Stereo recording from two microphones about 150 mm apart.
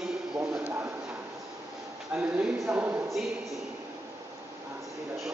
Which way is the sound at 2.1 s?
10° right (ahead or behind).